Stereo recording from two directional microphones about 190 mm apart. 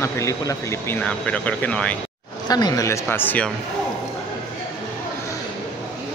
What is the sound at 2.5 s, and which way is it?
Speech, 20° left (ahead or behind).